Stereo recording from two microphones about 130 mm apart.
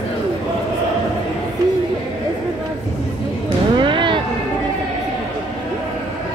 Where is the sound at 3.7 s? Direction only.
40° right (ahead or behind).